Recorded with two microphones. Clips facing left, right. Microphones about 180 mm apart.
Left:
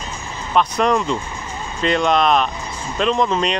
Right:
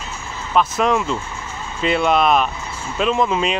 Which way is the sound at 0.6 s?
5° right (ahead or behind).